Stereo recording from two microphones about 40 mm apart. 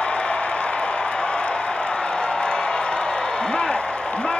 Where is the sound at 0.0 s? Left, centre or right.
Left.